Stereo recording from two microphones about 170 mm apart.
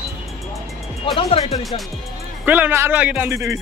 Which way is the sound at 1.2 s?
35° left (ahead or behind).